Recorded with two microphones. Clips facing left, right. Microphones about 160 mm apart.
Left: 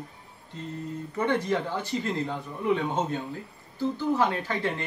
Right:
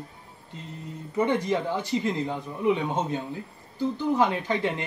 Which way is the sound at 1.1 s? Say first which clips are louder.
Right 2 dB; 10° right (ahead or behind).